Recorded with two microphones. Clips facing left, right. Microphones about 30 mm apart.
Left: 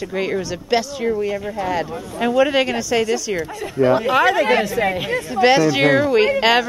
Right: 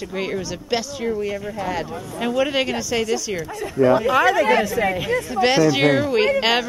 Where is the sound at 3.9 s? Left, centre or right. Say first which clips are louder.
Left 1 dB; left.